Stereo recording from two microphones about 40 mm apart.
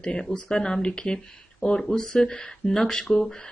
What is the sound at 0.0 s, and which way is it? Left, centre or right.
Speech, centre.